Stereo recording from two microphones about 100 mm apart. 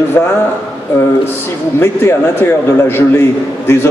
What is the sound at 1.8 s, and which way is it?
A man's voice, 25° left (ahead or behind).